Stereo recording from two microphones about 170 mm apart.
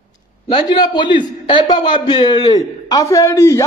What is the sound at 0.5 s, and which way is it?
A man's voice, 25° left (ahead or behind).